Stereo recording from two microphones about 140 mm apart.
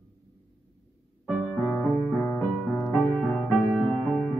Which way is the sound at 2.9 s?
5° left (ahead or behind).